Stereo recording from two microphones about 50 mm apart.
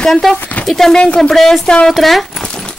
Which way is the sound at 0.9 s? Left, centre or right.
Centre.